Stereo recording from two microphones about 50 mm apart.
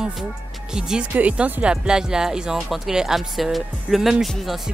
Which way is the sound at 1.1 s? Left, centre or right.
Right.